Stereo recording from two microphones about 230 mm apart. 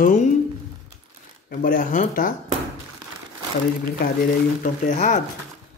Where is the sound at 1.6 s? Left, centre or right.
Left.